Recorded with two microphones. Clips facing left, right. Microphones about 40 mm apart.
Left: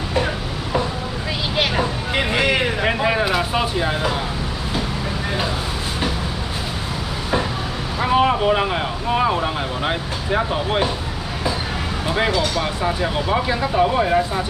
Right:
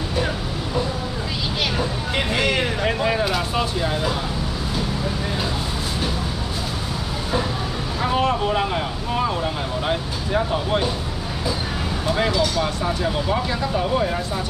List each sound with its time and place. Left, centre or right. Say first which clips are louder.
2.1 s vehicle: left 3 dB; centre
8.0 s speech: left 4 dB; centre
12.1 s speech: left 1 dB; centre